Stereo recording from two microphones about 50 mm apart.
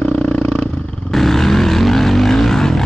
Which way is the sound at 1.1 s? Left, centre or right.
Centre.